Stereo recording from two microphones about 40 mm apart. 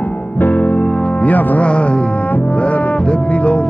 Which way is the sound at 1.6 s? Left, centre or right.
Left.